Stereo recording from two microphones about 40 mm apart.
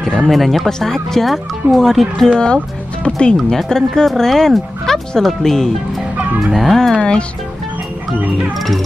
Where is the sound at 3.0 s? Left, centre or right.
Left.